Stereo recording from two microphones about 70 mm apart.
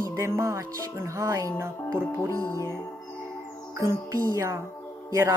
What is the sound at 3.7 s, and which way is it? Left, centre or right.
Music, right.